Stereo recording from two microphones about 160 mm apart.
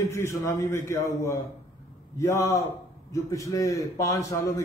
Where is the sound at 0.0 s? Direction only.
20° left (ahead or behind).